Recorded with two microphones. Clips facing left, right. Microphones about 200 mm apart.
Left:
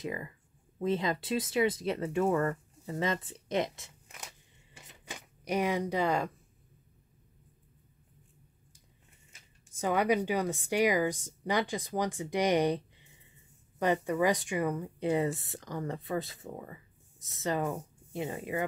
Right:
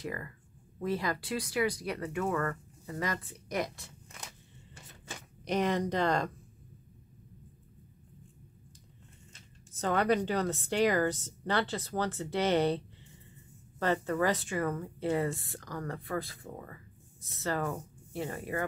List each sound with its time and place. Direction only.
0.0 s speech: 20° left (ahead or behind)
4.7 s a sound: 15° left (ahead or behind)
9.3 s speech: 10° left (ahead or behind)